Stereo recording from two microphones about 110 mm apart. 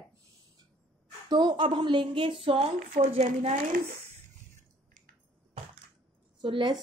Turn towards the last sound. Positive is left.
turn(degrees=-50)  # may be behind; listen again after turning